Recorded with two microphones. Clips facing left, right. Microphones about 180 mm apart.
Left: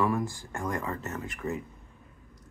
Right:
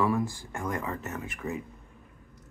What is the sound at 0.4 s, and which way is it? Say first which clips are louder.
Speech: even; 15° right (ahead or behind).